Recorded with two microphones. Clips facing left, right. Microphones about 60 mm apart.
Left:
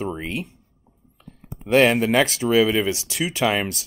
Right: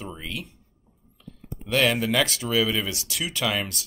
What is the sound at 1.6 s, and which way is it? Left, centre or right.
Speech, left.